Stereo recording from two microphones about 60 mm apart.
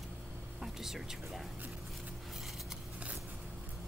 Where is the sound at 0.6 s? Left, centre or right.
Centre.